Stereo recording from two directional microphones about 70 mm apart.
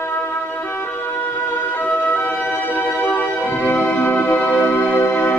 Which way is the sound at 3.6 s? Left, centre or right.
Left.